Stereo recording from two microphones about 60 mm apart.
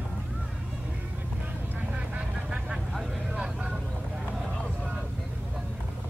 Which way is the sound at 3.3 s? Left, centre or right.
Centre.